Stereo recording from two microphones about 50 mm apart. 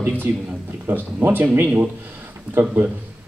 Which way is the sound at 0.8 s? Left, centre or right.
Right.